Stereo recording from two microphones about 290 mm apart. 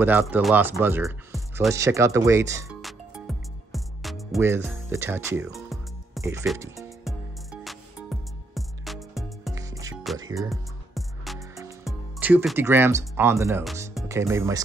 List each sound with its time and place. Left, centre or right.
0.0 s speech: centre
2.8 s music: centre
6.3 s speech: centre
7.1 s music: centre
9.6 s music: centre
10.5 s music: centre
11.3 s music: centre
11.8 s speech: centre